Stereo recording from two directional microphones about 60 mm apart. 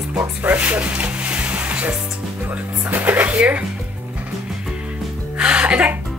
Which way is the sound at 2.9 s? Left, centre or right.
Right.